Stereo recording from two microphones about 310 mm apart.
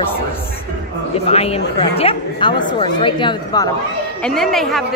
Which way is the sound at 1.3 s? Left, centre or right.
Centre.